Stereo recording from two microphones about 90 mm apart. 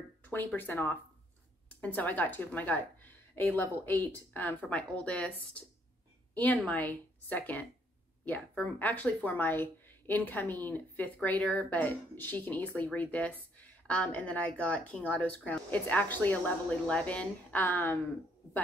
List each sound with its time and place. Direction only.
0.2 s a sound: 20° left (ahead or behind)
0.6 s a woman's voice: 20° left (ahead or behind)
8.7 s a woman's voice: 15° left (ahead or behind)